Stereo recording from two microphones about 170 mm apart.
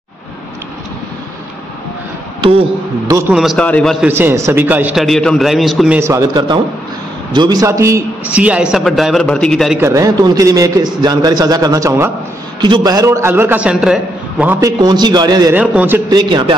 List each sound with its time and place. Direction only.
3.1 s a man's voice: 15° right (ahead or behind)
3.3 s a man's voice: 5° left (ahead or behind)
4.1 s a man's voice: 15° right (ahead or behind)
5.0 s a man's voice: 5° left (ahead or behind)
5.9 s a man's voice: 15° right (ahead or behind); by 9.8 s centre (ahead or behind)
9.8 s a man's voice: 20° right (ahead or behind)
14.6 s a man's voice: 25° right (ahead or behind)
15.5 s a man's voice: 10° right (ahead or behind)
16.1 s a man's voice: 25° right (ahead or behind)